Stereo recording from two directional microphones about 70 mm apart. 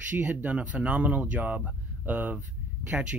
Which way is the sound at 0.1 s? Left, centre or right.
Right.